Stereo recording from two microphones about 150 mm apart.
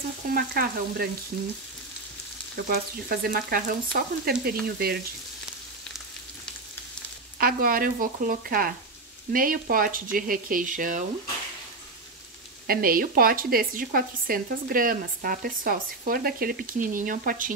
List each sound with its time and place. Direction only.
0.3 s frying: 85° right
2.5 s frying: 85° right
7.3 s speech: 75° right (ahead or behind); by 11.1 s 60° right (ahead or behind)
12.6 s speech: 80° right